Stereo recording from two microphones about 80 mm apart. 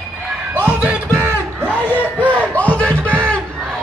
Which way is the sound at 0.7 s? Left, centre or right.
Centre.